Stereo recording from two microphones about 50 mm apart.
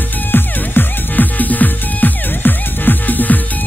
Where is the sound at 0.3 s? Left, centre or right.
Left.